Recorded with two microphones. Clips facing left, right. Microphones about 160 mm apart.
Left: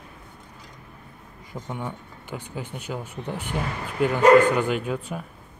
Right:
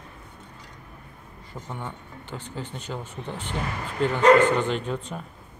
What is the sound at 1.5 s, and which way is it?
Speech, 10° left (ahead or behind).